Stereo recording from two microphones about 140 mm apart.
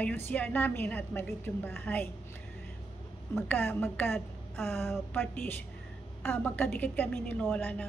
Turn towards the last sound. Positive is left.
turn(degrees=10)  # may be behind; listen again after turning